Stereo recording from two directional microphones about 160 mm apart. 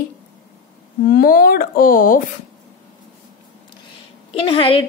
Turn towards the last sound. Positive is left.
turn(degrees=35)  # may be behind; listen again after turning